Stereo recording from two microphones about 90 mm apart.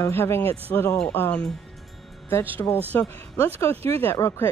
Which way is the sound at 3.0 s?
25° left (ahead or behind).